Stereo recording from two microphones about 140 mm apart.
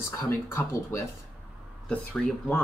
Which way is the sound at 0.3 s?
20° left (ahead or behind).